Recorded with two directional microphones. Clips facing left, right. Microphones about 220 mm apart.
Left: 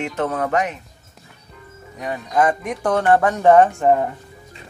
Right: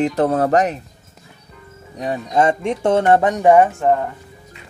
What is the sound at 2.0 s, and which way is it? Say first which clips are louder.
Speech: right 2 dB; 30° right (ahead or behind).